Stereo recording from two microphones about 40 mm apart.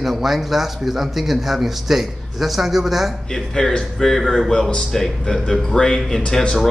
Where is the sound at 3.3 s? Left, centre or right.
Centre.